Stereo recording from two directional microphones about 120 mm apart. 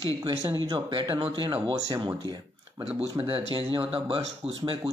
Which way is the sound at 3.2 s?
50° right (ahead or behind).